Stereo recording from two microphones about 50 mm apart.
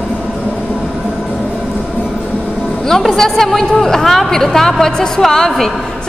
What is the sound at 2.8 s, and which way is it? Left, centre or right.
A woman's voice, centre.